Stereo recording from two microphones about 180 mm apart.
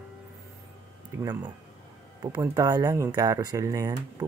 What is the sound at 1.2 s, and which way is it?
Speech, 20° right (ahead or behind).